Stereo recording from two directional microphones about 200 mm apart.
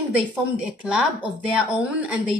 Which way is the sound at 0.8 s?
5° right (ahead or behind).